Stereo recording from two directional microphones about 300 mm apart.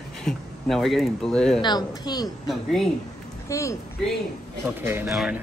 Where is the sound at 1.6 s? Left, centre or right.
Centre.